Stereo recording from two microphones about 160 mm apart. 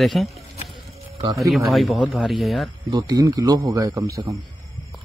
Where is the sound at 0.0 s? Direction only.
Centre (ahead or behind).